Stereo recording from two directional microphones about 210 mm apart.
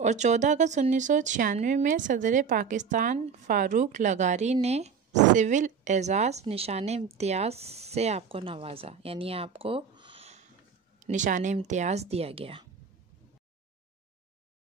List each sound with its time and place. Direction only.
0.0 s speech: 35° right (ahead or behind)